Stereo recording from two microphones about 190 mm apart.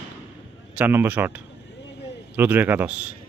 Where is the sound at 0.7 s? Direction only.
10° right (ahead or behind).